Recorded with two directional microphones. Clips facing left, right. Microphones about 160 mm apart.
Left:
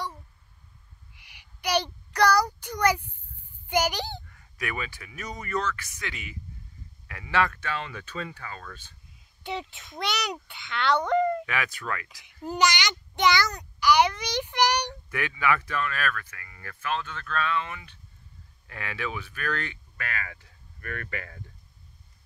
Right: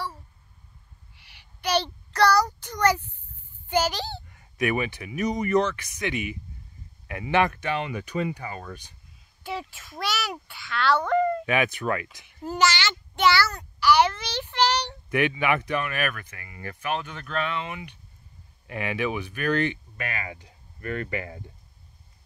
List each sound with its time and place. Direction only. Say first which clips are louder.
1.1 s child singing: right 1 dB; 15° left (ahead or behind)
3.6 s a child's voice: right 1 dB; 15° left (ahead or behind)
4.3 s speech: right 9 dB; 20° right (ahead or behind)
9.4 s a child's voice: even; 20° left (ahead or behind)
11.4 s speech: right 7 dB; 20° right (ahead or behind)
12.4 s a child's voice: right 1 dB; 15° left (ahead or behind)
15.0 s speech: right 5 dB; 20° right (ahead or behind)